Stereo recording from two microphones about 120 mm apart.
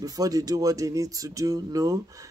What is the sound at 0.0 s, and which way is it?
Speech, 30° right (ahead or behind).